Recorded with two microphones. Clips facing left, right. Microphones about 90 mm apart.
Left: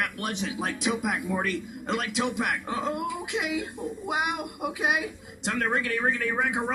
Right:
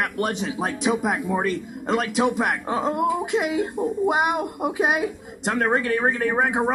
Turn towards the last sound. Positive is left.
turn(degrees=-40)  # may be behind; listen again after turning